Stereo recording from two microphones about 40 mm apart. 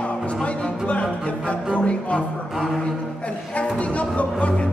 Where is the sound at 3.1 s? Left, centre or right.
Left.